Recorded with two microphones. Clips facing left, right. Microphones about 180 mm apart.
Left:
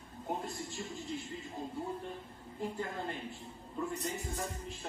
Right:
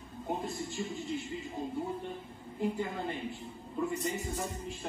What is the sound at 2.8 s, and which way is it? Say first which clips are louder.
A woman's voice: right 3 dB; 5° right (ahead or behind).